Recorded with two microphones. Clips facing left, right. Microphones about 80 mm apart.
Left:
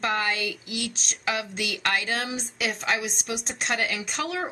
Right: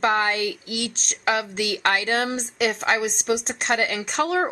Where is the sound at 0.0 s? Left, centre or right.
Right.